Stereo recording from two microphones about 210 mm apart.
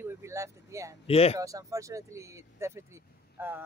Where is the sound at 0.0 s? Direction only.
10° right (ahead or behind).